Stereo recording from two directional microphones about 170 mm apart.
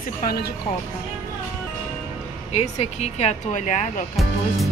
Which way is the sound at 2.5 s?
40° left (ahead or behind).